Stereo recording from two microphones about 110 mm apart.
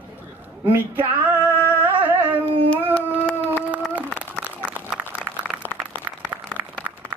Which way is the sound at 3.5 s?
15° right (ahead or behind).